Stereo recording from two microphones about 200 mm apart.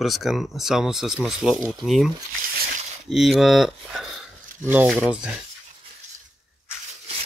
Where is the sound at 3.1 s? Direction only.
Centre (ahead or behind).